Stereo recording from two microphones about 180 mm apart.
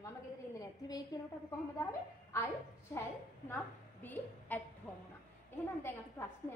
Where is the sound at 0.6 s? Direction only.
20° left (ahead or behind).